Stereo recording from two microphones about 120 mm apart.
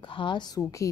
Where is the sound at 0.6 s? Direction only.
25° left (ahead or behind).